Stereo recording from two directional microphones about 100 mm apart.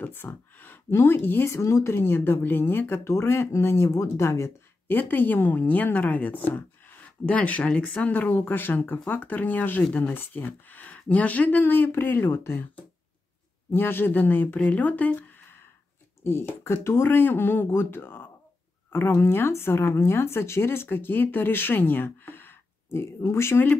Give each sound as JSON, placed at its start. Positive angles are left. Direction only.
{"t": 0.0, "sound": "a woman's voice", "side_deg": 20}